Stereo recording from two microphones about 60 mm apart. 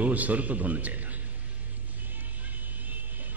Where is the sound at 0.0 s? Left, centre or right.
Right.